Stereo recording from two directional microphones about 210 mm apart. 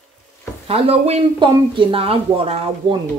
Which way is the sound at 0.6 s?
30° right (ahead or behind).